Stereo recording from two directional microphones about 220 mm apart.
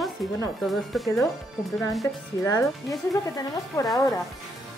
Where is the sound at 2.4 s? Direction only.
15° left (ahead or behind).